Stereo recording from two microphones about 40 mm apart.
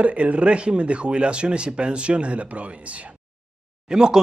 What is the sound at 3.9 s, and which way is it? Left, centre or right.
Speech, centre.